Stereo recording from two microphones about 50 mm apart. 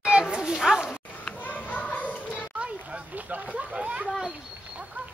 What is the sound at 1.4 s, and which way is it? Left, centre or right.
Children playing, left.